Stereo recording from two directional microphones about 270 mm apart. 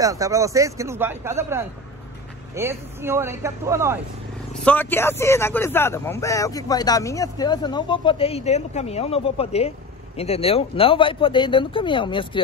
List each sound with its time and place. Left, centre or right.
0.0 s speech: centre
4.6 s speech: centre